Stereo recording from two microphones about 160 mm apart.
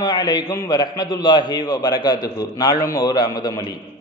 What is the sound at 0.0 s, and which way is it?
A man's voice, 25° left (ahead or behind).